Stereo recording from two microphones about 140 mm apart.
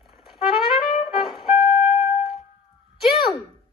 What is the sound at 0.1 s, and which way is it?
Trumpet, centre (ahead or behind).